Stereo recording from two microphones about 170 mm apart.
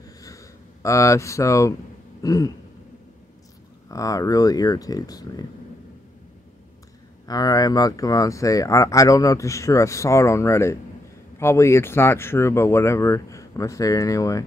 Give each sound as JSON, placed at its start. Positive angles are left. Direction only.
{"t": 0.2, "sound": "a sound", "side_deg": 20}
{"t": 2.2, "sound": "speech", "side_deg": 20}
{"t": 3.9, "sound": "speech", "side_deg": 20}
{"t": 7.2, "sound": "speech", "side_deg": 20}